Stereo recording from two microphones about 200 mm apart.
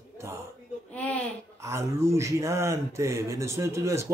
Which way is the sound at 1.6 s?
15° right (ahead or behind).